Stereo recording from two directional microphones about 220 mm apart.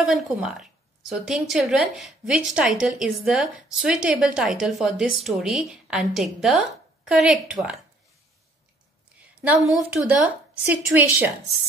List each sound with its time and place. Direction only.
0.0 s a woman's voice: 5° right (ahead or behind)
9.2 s a woman's voice: 5° right (ahead or behind)